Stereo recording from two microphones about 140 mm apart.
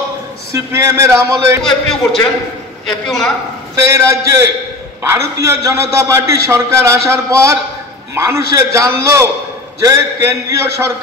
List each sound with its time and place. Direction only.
0.5 s a man's voice: 20° right (ahead or behind)
2.9 s a man's voice: centre (ahead or behind)
3.7 s a man's voice: 20° right (ahead or behind)